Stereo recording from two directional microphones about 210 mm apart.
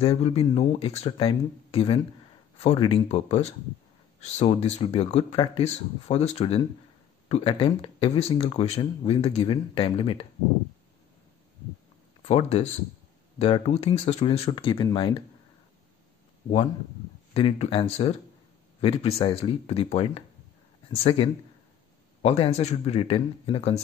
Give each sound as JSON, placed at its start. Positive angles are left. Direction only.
{"t": 0.0, "sound": "speech", "side_deg": 30}
{"t": 12.2, "sound": "speech", "side_deg": 30}
{"t": 17.3, "sound": "speech", "side_deg": 30}